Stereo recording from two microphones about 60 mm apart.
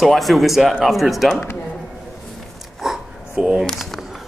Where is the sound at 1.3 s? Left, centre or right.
Left.